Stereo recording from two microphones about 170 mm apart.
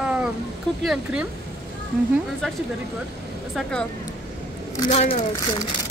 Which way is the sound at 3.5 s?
5° left (ahead or behind).